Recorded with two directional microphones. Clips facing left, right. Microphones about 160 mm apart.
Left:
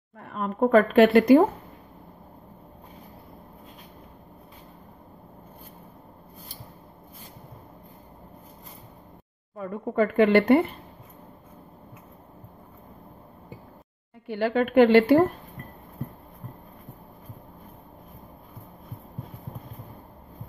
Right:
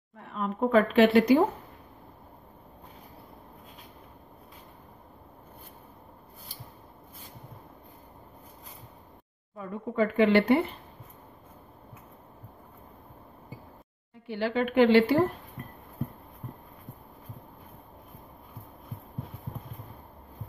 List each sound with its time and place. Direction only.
0.2 s speech: 50° left (ahead or behind)
9.6 s speech: 55° left (ahead or behind)
14.2 s speech: 50° left (ahead or behind)